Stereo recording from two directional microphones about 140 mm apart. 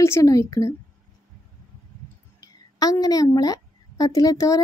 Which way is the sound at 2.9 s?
25° left (ahead or behind).